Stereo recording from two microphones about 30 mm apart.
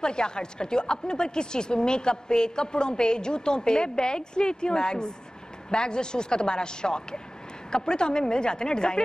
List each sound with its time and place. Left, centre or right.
0.0 s a woman's voice: left